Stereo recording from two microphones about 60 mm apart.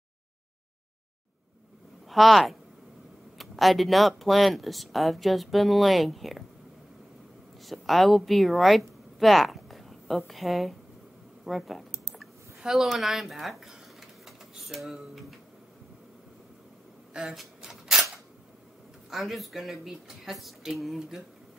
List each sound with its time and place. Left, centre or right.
2.0 s speech: centre
7.6 s speech: centre
17.1 s a sound: centre
19.0 s speech: centre